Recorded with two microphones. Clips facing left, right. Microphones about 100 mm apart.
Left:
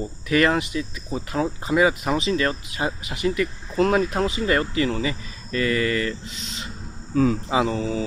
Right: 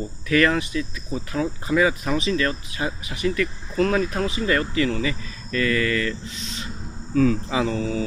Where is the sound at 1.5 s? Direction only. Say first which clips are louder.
Left 1 dB; 25° left (ahead or behind).